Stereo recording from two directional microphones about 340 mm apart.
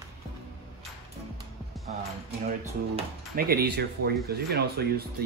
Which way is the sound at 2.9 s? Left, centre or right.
Right.